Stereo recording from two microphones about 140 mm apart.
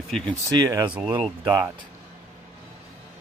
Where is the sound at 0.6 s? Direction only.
25° right (ahead or behind).